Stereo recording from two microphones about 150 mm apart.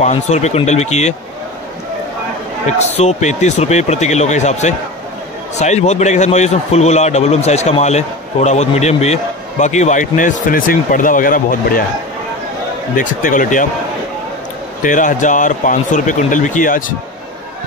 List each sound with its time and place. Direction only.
0.0 s a man's voice: 50° left (ahead or behind)
3.0 s a man's voice: 50° left (ahead or behind); by 11.8 s 65° left (ahead or behind)
12.9 s a man's voice: 60° left (ahead or behind)
14.8 s a man's voice: 60° left (ahead or behind)